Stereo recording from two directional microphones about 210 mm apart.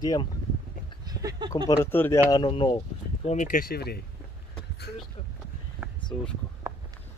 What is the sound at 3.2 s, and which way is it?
Speech, 35° left (ahead or behind).